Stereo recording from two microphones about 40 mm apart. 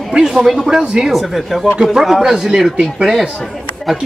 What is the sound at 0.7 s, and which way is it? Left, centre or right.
Speech, centre.